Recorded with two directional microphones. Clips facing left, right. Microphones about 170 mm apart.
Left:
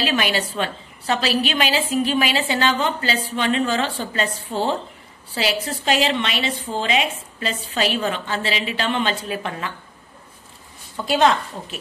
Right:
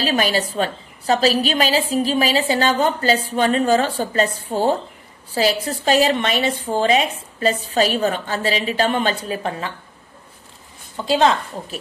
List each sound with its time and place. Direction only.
0.0 s a woman's voice: 40° right (ahead or behind)
11.1 s a woman's voice: 30° right (ahead or behind)